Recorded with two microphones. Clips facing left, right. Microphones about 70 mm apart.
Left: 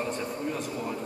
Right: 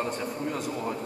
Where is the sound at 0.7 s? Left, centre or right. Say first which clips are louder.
Right 2 dB; right.